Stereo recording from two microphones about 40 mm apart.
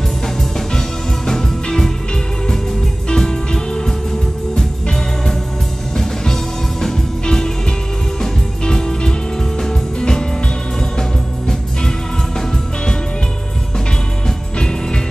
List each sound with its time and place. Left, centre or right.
0.7 s music: centre
3.1 s music: centre
5.9 s music: centre
14.6 s music: centre